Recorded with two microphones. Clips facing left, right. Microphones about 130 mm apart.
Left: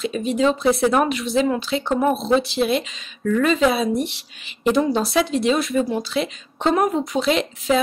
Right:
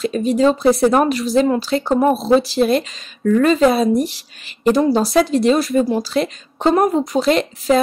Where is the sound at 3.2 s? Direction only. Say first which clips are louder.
Right 5 dB; 40° right (ahead or behind).